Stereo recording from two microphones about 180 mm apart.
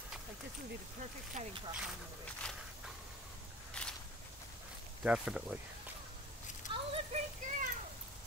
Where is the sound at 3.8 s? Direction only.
5° left (ahead or behind).